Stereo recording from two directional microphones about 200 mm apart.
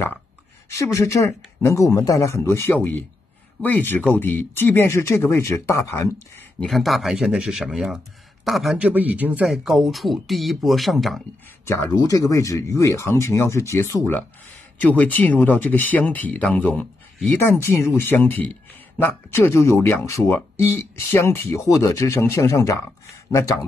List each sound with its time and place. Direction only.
0.7 s speech: 15° left (ahead or behind)
6.6 s speech: centre (ahead or behind)
11.6 s speech: 15° left (ahead or behind)